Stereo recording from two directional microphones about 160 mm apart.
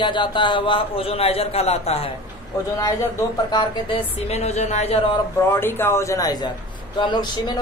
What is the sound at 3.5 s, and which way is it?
Speech, 30° left (ahead or behind).